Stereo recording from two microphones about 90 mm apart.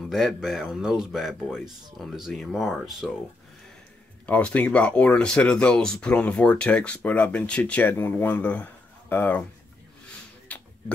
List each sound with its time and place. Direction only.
0.1 s speech: centre (ahead or behind)
4.3 s speech: 15° left (ahead or behind)
10.5 s a sound: 15° left (ahead or behind)